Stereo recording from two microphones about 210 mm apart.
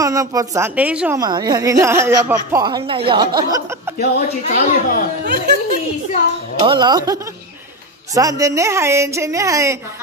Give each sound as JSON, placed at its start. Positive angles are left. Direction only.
{"t": 0.0, "sound": "a woman's voice", "side_deg": -15}
{"t": 1.2, "sound": "a woman's voice", "side_deg": -20}
{"t": 4.0, "sound": "speech", "side_deg": 45}
{"t": 6.6, "sound": "a woman's voice", "side_deg": -20}